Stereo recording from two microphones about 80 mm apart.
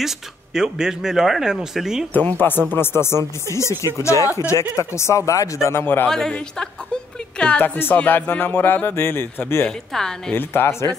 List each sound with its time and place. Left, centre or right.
0.6 s speech: centre
2.1 s speech: left
6.0 s a man's voice: centre; by 9.7 s left
9.7 s a man's voice: centre
10.3 s speech: left